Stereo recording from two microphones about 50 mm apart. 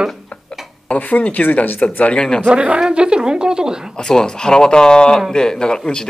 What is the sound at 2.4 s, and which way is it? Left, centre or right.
A woman's voice, right.